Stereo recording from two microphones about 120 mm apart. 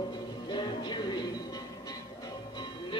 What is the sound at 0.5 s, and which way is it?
Music, 40° left (ahead or behind).